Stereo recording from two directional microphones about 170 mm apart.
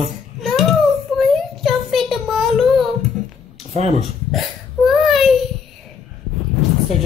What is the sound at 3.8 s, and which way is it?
Speech, 40° right (ahead or behind).